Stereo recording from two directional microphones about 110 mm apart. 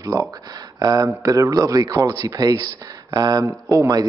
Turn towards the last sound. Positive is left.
turn(degrees=-35)  # may be behind; listen again after turning